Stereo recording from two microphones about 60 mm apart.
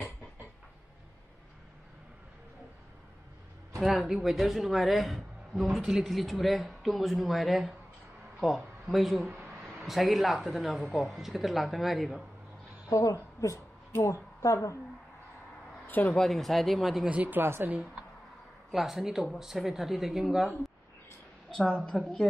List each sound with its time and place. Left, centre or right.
3.8 s speech: centre
12.8 s a woman's voice: left
15.9 s speech: left
16.2 s speech: centre
17.1 s speech: right
17.4 s a woman's voice: right
18.7 s speech: centre
21.5 s a woman's voice: centre